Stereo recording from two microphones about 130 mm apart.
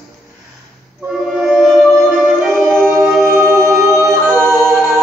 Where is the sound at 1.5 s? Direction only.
Centre (ahead or behind).